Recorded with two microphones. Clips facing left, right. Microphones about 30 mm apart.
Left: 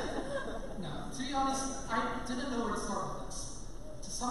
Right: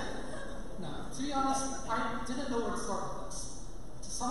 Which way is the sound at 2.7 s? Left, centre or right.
Centre.